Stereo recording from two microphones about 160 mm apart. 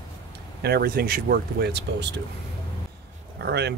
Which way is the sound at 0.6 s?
85° right.